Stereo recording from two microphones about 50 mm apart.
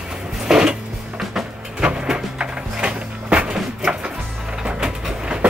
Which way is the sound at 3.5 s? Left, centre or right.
Centre.